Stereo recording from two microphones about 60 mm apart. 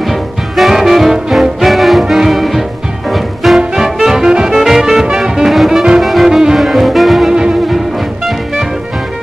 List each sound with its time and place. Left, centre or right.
0.0 s music: centre